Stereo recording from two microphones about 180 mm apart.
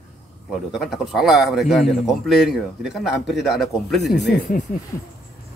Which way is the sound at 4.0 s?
70° left (ahead or behind).